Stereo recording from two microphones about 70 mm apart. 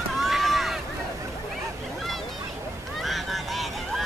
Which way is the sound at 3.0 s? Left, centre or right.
Centre.